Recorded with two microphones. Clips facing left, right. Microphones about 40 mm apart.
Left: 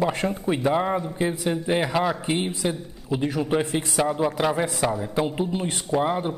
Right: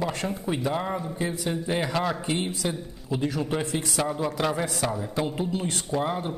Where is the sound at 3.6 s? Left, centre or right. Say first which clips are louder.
Left 3 dB; left.